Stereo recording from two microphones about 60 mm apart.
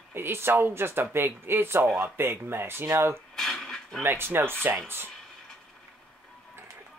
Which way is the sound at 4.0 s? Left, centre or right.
Right.